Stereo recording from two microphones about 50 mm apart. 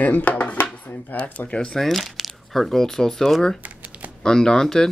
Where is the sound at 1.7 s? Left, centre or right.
Centre.